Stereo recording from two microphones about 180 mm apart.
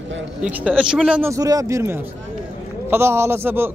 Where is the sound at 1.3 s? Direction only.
20° right (ahead or behind).